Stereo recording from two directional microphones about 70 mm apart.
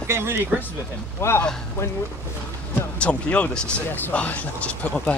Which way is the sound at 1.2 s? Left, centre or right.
Left.